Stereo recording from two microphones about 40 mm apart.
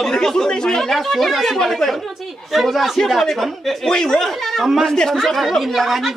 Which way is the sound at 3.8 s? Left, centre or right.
Centre.